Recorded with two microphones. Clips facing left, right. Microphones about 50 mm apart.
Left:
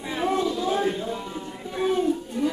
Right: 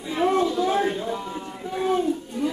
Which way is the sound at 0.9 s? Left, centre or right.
Right.